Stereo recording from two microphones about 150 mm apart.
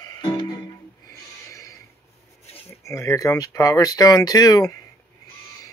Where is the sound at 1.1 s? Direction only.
20° left (ahead or behind).